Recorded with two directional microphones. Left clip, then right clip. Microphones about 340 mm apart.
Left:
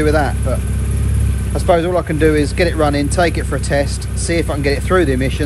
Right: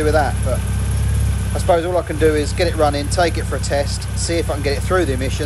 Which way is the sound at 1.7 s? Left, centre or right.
Left.